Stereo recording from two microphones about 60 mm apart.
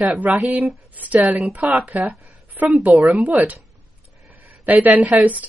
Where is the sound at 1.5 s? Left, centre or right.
Right.